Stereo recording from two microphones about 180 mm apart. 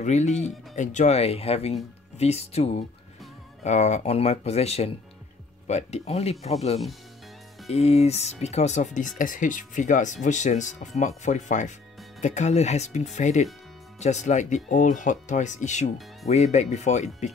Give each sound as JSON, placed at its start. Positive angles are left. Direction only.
{"t": 0.0, "sound": "speech", "side_deg": 40}